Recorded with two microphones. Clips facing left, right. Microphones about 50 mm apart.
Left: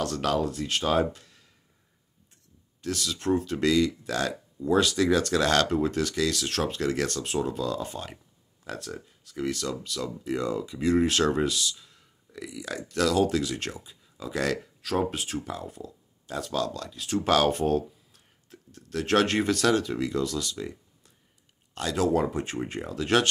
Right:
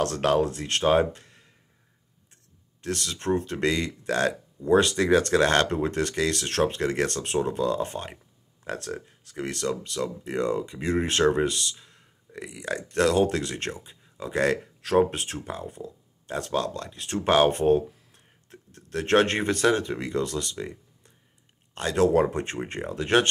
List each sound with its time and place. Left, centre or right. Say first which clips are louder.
0.0 s speech: right 4 dB; right
2.8 s speech: even; right
20.5 s a sound: right 1 dB; right
21.7 s speech: right 4 dB; right